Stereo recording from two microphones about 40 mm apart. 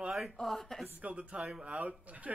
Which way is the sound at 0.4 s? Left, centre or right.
Centre.